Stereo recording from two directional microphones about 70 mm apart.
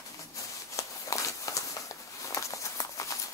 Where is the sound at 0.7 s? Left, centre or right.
Left.